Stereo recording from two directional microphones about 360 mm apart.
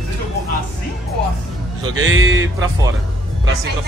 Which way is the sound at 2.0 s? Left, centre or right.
Right.